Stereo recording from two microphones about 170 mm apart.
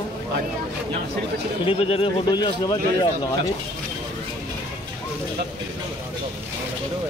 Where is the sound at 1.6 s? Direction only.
35° left (ahead or behind).